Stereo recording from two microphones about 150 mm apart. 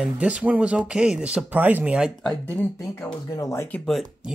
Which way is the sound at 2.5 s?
15° left (ahead or behind).